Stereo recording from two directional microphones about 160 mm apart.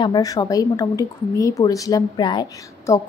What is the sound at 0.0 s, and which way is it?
A woman's voice, 25° left (ahead or behind).